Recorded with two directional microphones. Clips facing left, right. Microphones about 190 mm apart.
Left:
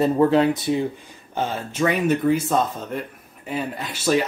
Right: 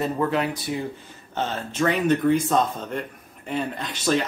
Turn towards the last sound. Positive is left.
turn(degrees=5)  # may be behind; listen again after turning